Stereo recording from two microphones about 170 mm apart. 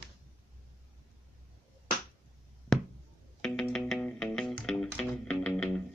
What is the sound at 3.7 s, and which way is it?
Music, 5° left (ahead or behind).